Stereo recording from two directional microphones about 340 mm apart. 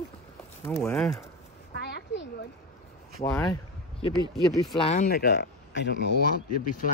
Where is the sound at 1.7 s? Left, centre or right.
Left.